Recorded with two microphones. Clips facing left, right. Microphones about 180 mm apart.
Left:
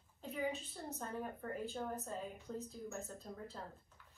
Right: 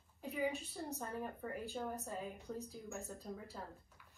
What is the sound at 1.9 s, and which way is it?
A woman's voice, 15° right (ahead or behind).